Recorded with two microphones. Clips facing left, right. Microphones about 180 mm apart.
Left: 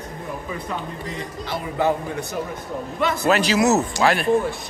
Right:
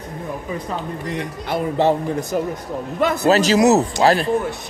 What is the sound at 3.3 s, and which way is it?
Speech, 40° right (ahead or behind).